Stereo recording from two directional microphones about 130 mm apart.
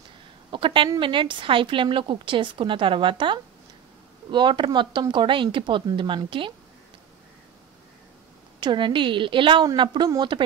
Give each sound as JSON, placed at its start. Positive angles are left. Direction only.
{"t": 0.5, "sound": "a woman's voice", "side_deg": -40}
{"t": 8.5, "sound": "a woman's voice", "side_deg": -35}